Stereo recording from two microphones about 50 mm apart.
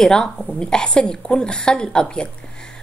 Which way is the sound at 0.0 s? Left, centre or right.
Centre.